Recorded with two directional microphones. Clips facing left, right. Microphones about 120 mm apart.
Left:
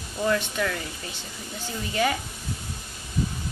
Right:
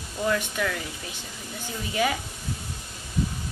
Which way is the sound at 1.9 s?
10° right (ahead or behind).